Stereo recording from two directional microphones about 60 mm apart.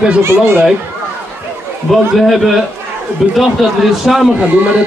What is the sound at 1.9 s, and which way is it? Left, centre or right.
Speech, centre.